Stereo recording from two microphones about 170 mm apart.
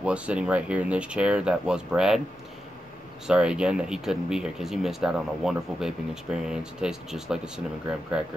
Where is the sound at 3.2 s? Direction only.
5° right (ahead or behind).